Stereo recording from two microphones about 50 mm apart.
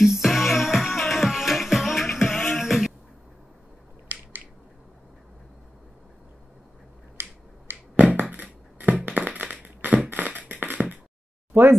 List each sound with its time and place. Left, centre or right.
0.0 s music: centre
7.2 s finger snapping: right
7.9 s crushing: right
10.0 s beatboxing: right
11.5 s speech: right